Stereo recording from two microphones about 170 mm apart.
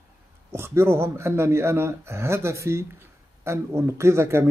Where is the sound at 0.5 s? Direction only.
15° right (ahead or behind).